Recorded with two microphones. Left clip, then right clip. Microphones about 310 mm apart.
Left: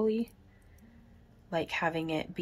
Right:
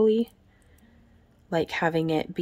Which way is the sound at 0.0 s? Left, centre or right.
Right.